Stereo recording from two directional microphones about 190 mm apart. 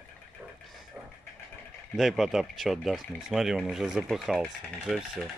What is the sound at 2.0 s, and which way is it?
Speech, centre (ahead or behind).